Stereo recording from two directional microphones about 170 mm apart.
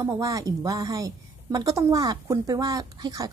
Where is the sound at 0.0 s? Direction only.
20° right (ahead or behind).